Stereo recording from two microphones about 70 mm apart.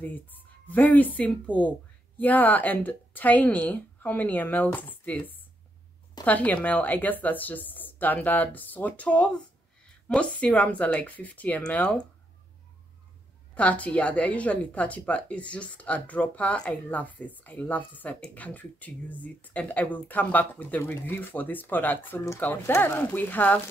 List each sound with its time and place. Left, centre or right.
0.0 s speech: left
13.6 s speech: left